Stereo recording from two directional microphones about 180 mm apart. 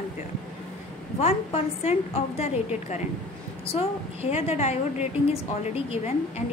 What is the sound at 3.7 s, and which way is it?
A woman's voice, 35° left (ahead or behind).